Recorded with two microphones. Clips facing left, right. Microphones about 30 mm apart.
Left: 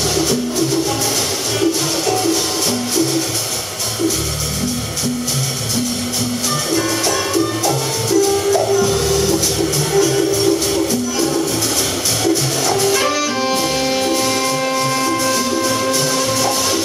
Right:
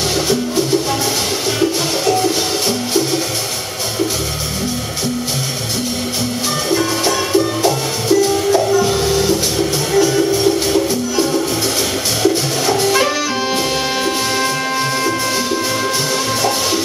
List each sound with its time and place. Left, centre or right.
1.6 s music: centre
6.7 s music: centre
7.3 s music: right
8.5 s music: centre
12.8 s music: centre